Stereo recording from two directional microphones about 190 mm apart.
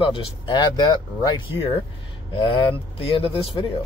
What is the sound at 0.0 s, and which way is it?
Speech, 25° left (ahead or behind).